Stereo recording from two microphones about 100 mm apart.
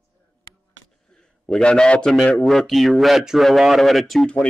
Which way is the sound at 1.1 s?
5° left (ahead or behind).